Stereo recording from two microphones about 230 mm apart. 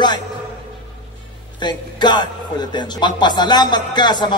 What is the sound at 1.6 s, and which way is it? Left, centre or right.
Speech, centre.